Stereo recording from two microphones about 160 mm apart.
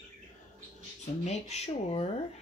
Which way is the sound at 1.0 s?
45° left (ahead or behind).